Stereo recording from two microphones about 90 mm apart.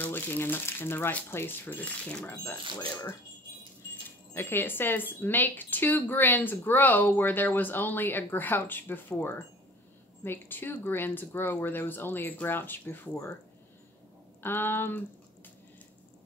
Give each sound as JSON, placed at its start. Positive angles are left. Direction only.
{"t": 0.0, "sound": "speech", "side_deg": 25}
{"t": 4.3, "sound": "speech", "side_deg": 25}
{"t": 14.4, "sound": "speech", "side_deg": 25}